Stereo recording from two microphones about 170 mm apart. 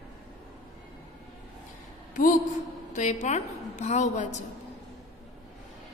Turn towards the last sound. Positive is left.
turn(degrees=45)  # may be behind; listen again after turning